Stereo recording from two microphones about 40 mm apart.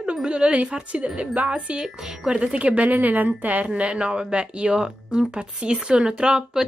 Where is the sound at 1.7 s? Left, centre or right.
Centre.